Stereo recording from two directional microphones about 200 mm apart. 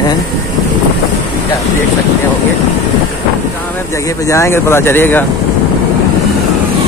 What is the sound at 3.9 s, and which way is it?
Speech, 15° left (ahead or behind).